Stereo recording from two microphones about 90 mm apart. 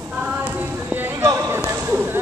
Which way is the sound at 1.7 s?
25° right (ahead or behind).